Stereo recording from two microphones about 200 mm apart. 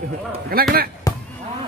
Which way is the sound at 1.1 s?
15° left (ahead or behind).